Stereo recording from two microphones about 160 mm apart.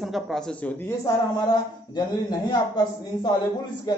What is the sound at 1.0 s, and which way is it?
Speech, 25° left (ahead or behind).